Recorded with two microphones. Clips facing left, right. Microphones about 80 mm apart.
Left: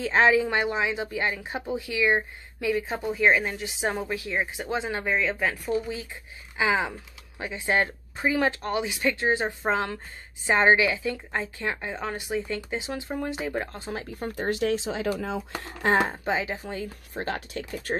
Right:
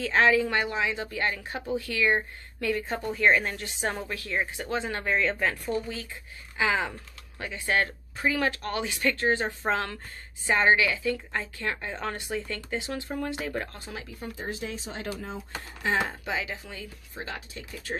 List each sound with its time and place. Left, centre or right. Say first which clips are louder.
0.0 s a woman's voice: left 2 dB; left
10.4 s a woman's voice: left 2 dB; left
14.3 s speech: left 10 dB; left
16.0 s speech: left 4 dB; left
17.1 s speech: left 6 dB; left